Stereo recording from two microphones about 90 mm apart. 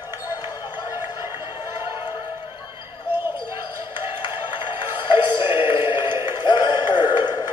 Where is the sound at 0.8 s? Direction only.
30° right (ahead or behind).